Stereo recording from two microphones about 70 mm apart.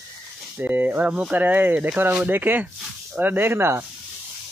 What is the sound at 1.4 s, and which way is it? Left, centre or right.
Speech, right.